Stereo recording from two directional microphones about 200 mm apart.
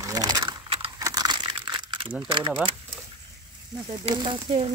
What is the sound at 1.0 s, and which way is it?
Crumpling, 20° right (ahead or behind).